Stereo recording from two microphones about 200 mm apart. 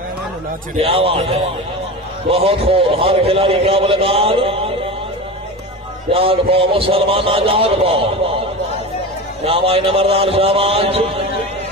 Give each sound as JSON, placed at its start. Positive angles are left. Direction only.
{"t": 0.7, "sound": "a man's voice", "side_deg": -30}
{"t": 6.1, "sound": "a man's voice", "side_deg": -30}
{"t": 9.4, "sound": "a man's voice", "side_deg": -30}